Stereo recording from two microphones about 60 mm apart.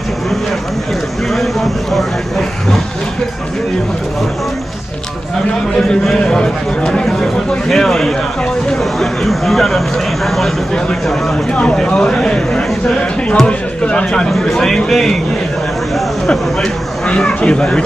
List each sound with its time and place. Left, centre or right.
1.3 s a sound: centre
5.8 s a man's voice: centre
11.5 s a man's voice: centre
17.1 s a man's voice: centre